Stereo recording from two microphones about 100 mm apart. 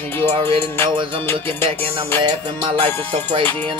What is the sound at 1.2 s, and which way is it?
Music, 20° left (ahead or behind).